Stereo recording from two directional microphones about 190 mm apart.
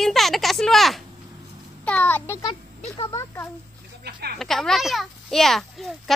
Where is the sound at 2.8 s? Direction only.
30° left (ahead or behind).